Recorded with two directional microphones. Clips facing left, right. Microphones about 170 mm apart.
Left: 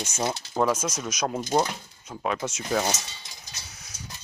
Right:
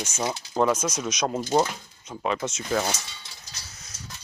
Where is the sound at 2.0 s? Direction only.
5° left (ahead or behind).